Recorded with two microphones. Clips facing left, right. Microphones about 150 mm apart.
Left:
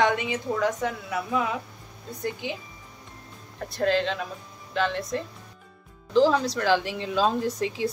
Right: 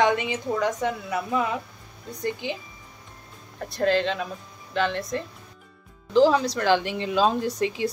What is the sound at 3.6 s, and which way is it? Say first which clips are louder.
A woman's voice: right 1 dB; centre (ahead or behind).